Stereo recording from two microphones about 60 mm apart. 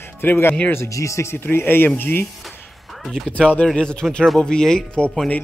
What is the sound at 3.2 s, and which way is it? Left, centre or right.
A man's voice, centre.